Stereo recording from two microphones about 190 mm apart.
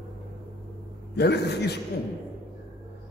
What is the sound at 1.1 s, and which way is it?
Speech, 60° left (ahead or behind).